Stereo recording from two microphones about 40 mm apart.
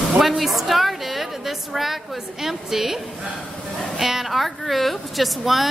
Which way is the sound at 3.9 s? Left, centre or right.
Centre.